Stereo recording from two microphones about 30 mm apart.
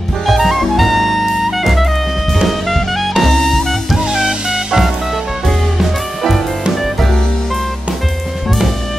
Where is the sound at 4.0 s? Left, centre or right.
Centre.